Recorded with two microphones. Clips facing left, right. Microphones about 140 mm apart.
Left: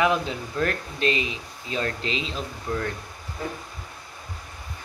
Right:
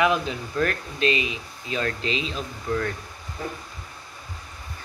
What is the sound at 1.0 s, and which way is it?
Speech, 20° right (ahead or behind).